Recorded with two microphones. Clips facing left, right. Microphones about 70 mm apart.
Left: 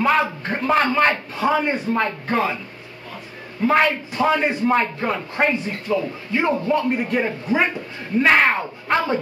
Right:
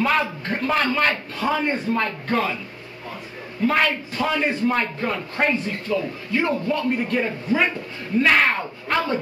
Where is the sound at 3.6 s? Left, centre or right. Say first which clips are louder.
Left 3 dB; left.